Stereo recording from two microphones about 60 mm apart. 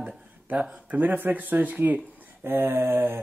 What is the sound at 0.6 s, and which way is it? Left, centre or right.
Speech, right.